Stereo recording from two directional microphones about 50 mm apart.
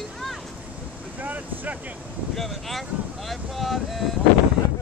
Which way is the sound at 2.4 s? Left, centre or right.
Centre.